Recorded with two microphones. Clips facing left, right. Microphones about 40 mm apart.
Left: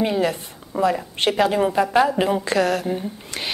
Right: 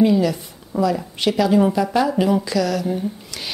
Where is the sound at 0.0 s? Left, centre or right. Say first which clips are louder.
Right 4 dB; left.